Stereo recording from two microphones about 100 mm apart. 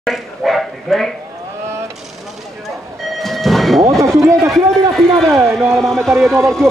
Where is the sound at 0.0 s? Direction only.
Centre (ahead or behind).